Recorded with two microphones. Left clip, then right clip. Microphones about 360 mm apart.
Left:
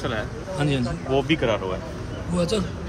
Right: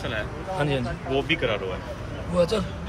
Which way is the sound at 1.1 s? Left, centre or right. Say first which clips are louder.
Left 3 dB; left.